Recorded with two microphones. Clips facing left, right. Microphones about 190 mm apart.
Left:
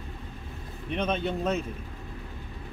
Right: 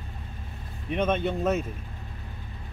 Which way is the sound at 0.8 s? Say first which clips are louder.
Right 3 dB; 5° right (ahead or behind).